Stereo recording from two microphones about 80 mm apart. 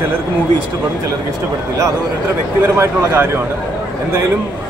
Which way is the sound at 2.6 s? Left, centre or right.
Right.